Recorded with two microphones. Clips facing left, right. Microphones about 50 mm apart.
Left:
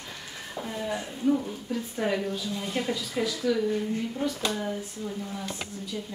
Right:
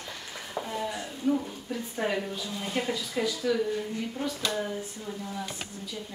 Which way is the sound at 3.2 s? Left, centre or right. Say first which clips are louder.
Even; centre.